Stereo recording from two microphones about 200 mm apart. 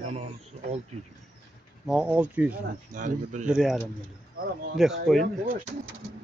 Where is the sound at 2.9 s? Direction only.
40° right (ahead or behind).